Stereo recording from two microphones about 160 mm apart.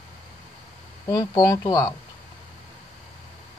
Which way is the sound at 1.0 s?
20° left (ahead or behind).